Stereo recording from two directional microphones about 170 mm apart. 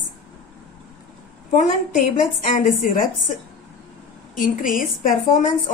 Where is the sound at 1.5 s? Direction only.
50° left (ahead or behind).